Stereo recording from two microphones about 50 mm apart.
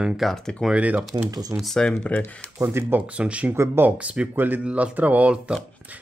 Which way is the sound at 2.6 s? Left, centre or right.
Right.